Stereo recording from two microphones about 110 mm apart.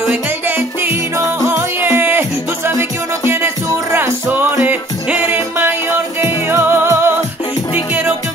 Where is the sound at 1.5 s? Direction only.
20° right (ahead or behind).